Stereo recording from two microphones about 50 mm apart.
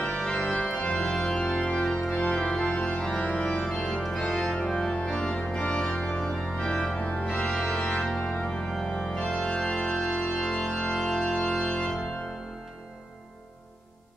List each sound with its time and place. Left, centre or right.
0.0 s organ: left